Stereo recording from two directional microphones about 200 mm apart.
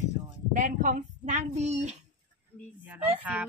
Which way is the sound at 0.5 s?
40° right (ahead or behind).